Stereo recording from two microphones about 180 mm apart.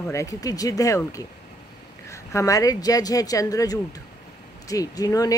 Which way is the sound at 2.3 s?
20° left (ahead or behind).